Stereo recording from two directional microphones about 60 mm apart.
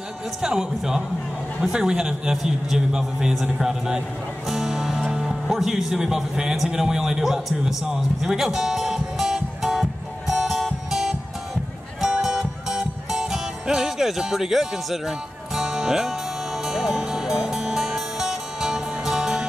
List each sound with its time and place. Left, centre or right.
0.4 s a man's voice: centre
4.5 s music: centre